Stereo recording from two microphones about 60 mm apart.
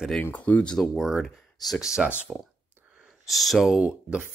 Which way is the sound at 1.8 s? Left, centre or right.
Centre.